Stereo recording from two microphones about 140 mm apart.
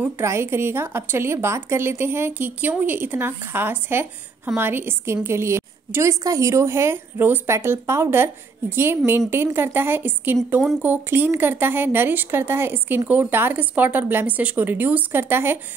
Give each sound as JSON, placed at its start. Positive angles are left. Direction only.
{"t": 0.0, "sound": "speech", "side_deg": -20}